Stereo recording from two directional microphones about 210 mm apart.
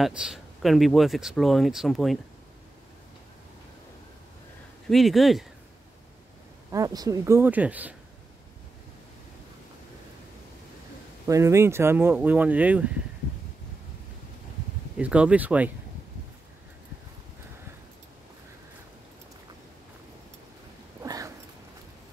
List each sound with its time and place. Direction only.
0.0 s speech: centre (ahead or behind)
4.8 s speech: centre (ahead or behind)
6.7 s speech: 15° right (ahead or behind)
11.2 s speech: 15° right (ahead or behind)
15.0 s speech: 5° right (ahead or behind)
21.0 s a sound: 15° right (ahead or behind)